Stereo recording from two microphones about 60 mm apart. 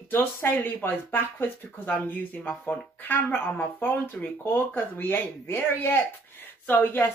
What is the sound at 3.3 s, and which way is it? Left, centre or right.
Speech, left.